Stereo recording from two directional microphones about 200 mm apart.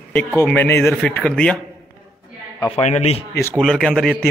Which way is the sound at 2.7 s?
35° left (ahead or behind).